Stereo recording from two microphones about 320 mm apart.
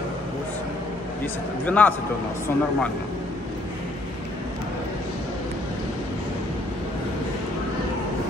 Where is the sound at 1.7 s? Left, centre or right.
Centre.